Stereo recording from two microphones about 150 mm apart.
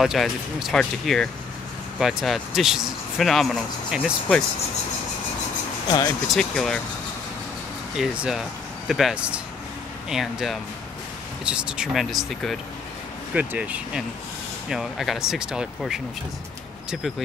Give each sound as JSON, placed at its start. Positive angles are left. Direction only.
{"t": 0.0, "sound": "speech", "side_deg": 0}
{"t": 5.9, "sound": "speech", "side_deg": 25}
{"t": 6.3, "sound": "speech", "side_deg": 5}
{"t": 8.0, "sound": "speech", "side_deg": -5}